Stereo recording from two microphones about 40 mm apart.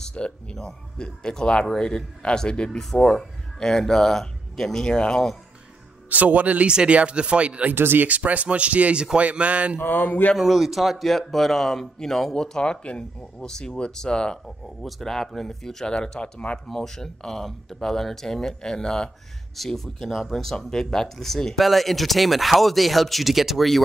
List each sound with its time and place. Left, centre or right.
0.1 s speech: left
0.6 s speech: centre
2.8 s speech: centre
6.0 s speech: right
6.7 s speech: right
7.7 s speech: right
8.1 s speech: right
9.8 s speech: left
10.3 s speech: centre
12.8 s speech: left
14.8 s speech: centre; by 16.5 s left
16.6 s speech: centre
19.5 s speech: centre